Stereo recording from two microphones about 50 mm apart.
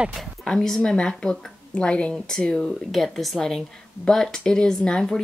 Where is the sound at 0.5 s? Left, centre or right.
Centre.